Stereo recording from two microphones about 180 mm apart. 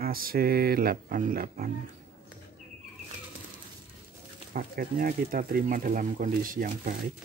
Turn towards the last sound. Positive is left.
turn(degrees=-50)  # may be behind; listen again after turning